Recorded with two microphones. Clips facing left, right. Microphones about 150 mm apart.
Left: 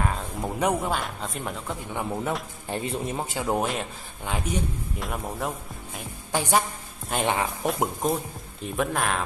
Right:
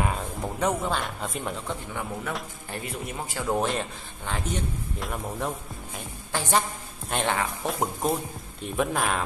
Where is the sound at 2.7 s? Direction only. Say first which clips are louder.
Left 7 dB; 25° left (ahead or behind).